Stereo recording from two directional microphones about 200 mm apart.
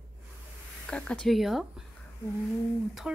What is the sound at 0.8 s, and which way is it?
Speech, 5° left (ahead or behind).